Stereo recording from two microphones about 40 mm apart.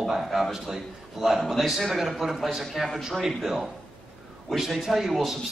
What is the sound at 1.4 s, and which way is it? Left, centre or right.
A man's voice, centre.